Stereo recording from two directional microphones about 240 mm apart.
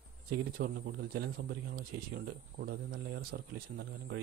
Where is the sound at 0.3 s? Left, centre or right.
Right.